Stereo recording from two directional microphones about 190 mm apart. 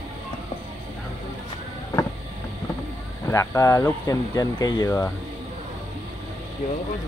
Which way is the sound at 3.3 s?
15° left (ahead or behind).